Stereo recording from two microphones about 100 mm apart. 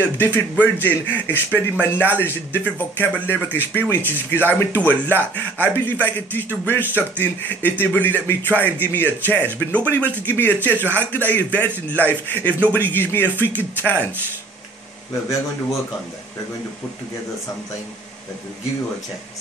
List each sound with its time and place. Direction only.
0.0 s a man's voice: 20° left (ahead or behind)
10.7 s speech: 20° right (ahead or behind)
11.1 s a man's voice: 15° left (ahead or behind)